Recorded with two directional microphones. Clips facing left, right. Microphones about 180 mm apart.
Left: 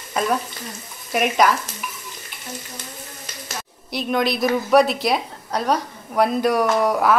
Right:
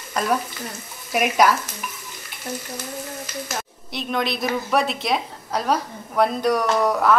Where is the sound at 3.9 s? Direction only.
Centre (ahead or behind).